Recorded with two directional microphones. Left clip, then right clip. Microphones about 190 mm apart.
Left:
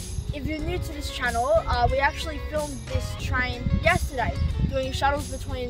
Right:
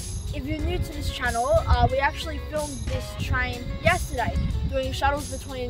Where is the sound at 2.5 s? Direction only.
15° left (ahead or behind).